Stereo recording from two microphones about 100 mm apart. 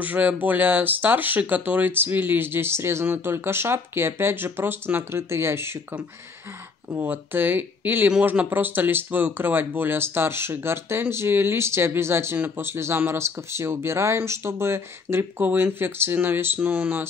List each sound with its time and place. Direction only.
0.0 s speech: 15° right (ahead or behind)
6.9 s speech: 25° right (ahead or behind)